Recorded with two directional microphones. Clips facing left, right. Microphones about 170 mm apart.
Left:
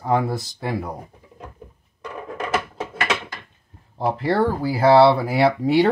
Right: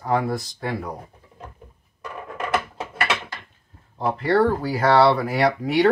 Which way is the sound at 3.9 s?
30° left (ahead or behind).